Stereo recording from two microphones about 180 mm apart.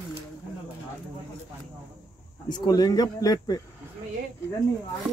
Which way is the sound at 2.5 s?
20° left (ahead or behind).